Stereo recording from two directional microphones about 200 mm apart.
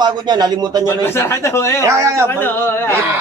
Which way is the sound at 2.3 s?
10° left (ahead or behind).